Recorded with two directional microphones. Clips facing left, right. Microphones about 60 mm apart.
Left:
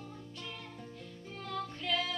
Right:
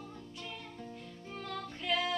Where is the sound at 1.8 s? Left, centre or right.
Centre.